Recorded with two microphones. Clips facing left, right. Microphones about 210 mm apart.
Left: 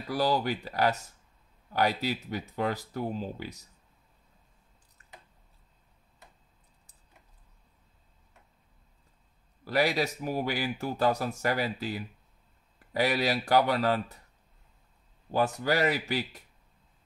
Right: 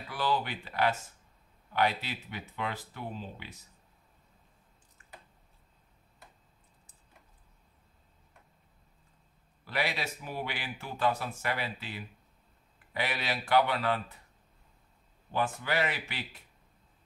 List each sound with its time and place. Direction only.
0.1 s speech: 40° left (ahead or behind)
9.7 s speech: 40° left (ahead or behind)
15.3 s speech: 40° left (ahead or behind)